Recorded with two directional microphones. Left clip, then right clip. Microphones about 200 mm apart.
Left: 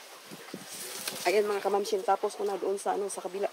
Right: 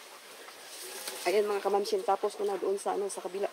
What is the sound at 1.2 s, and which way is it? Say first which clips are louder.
Speech: left 1 dB; 20° left (ahead or behind).